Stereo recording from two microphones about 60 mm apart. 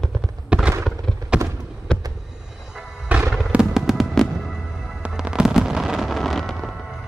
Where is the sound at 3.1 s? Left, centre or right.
Right.